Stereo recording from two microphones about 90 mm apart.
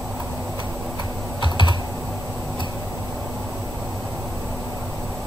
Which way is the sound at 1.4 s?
60° left (ahead or behind).